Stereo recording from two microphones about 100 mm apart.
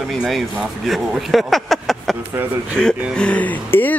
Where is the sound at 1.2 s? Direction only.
Centre (ahead or behind).